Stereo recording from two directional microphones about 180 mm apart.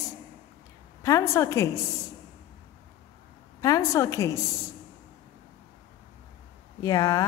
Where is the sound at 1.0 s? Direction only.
15° left (ahead or behind).